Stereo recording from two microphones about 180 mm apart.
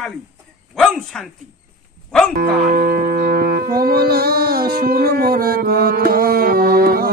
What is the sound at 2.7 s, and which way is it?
Music, 55° right (ahead or behind).